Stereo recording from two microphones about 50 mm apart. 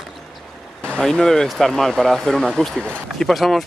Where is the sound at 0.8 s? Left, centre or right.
Centre.